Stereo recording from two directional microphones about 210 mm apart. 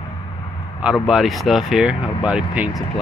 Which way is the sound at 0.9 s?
Centre (ahead or behind).